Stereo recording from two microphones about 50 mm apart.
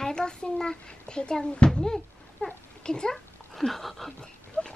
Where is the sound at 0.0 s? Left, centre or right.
Centre.